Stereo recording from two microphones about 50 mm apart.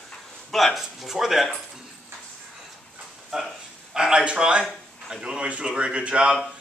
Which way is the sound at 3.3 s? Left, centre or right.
Centre.